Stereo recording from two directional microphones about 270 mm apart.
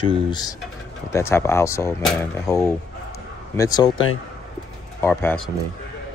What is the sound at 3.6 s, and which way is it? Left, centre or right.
Speech, centre.